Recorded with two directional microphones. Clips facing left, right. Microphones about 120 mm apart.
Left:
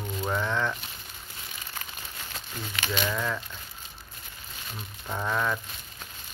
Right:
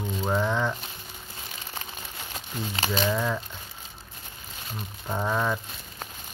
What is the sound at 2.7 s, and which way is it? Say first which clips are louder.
Speech: right 3 dB; 35° right (ahead or behind).